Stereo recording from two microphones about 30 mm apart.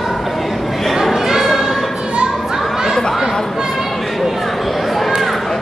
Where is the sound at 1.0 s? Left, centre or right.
Centre.